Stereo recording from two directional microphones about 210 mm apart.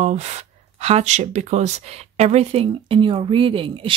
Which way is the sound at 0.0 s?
35° right (ahead or behind).